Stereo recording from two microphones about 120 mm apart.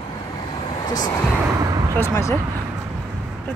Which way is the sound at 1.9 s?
20° left (ahead or behind).